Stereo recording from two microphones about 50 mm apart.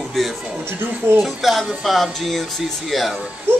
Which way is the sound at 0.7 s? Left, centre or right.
Right.